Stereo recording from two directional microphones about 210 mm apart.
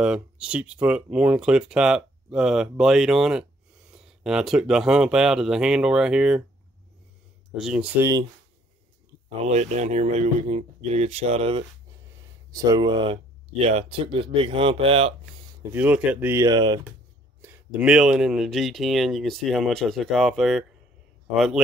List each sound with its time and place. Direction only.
0.0 s speech: 5° right (ahead or behind)
7.5 s speech: 5° right (ahead or behind)
9.4 s speech: 35° right (ahead or behind)
12.4 s speech: 15° right (ahead or behind)
15.7 s speech: 5° right (ahead or behind)
17.4 s speech: 10° right (ahead or behind)